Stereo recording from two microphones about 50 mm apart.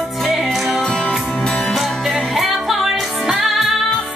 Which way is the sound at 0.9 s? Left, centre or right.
Centre.